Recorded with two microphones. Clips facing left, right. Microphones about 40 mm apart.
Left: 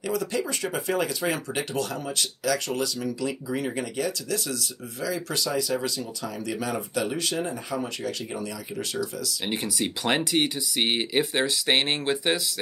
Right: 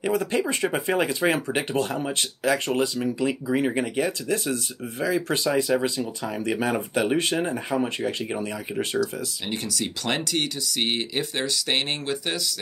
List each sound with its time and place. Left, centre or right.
0.0 s speech: right
9.5 s speech: centre